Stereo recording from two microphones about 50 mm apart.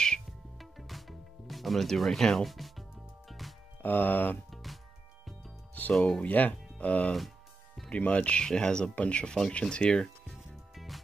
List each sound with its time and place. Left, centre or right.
0.6 s music: centre
3.8 s speech: left
4.5 s music: centre
5.8 s music: left
6.2 s speech: left
7.2 s music: centre
7.9 s speech: left
10.5 s music: centre